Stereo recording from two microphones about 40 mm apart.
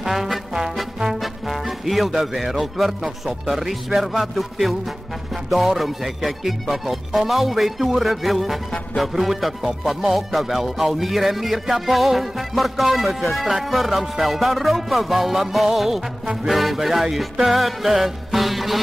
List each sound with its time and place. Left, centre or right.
0.0 s music: centre
5.8 s music: centre